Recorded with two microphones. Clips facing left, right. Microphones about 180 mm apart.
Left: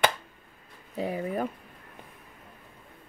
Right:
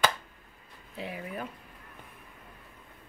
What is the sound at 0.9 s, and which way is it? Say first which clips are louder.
Speech: left 8 dB; 40° left (ahead or behind).